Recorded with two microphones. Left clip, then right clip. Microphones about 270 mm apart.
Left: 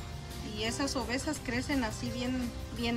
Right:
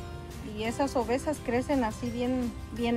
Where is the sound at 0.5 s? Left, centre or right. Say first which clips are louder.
Right 5 dB; centre.